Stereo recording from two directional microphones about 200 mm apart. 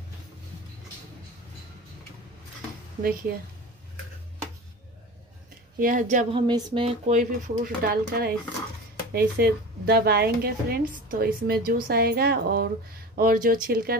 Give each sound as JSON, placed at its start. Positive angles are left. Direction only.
{"t": 3.0, "sound": "speech", "side_deg": -45}
{"t": 5.8, "sound": "a woman's voice", "side_deg": -40}
{"t": 6.3, "sound": "a sound", "side_deg": -25}
{"t": 7.1, "sound": "speech", "side_deg": -40}